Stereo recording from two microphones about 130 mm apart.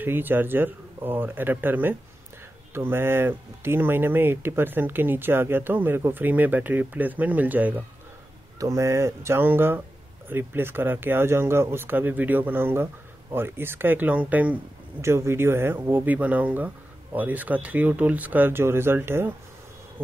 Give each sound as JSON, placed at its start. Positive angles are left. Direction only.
{"t": 0.0, "sound": "speech", "side_deg": -15}